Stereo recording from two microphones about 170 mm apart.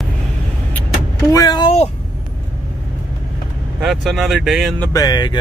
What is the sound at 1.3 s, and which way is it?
Speech, 20° left (ahead or behind).